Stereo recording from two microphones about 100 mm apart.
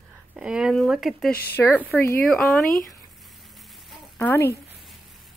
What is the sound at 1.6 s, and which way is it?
Speech, 15° left (ahead or behind).